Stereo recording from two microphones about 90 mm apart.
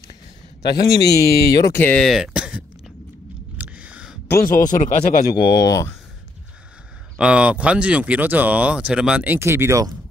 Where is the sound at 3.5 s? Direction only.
10° right (ahead or behind).